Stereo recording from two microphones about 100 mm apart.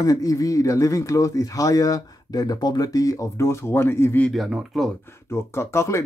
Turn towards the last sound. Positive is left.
turn(degrees=30)  # may be behind; listen again after turning